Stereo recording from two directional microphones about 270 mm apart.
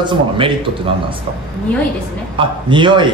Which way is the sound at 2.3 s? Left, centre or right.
Centre.